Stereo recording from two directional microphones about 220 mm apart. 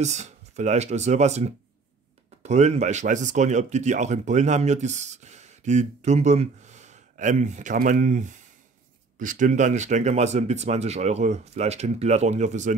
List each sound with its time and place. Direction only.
0.0 s speech: 30° right (ahead or behind)